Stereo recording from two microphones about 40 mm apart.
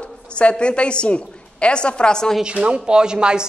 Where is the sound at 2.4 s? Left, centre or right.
Right.